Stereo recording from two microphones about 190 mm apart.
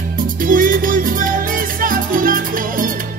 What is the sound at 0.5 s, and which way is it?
Music, 45° right (ahead or behind).